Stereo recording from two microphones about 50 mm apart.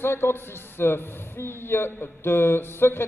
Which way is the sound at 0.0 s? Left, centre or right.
Left.